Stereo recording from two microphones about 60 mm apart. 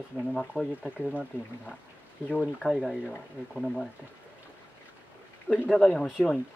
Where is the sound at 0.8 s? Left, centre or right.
Right.